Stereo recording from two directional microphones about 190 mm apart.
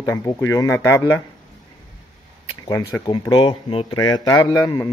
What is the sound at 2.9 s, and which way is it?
A man's voice, 15° left (ahead or behind).